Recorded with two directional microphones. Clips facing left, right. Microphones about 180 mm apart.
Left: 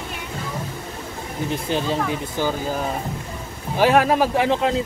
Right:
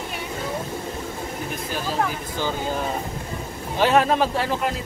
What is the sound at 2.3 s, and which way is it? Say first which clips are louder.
A man's voice: left 2 dB; 10° left (ahead or behind).